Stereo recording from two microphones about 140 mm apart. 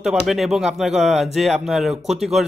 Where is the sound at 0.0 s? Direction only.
Centre (ahead or behind).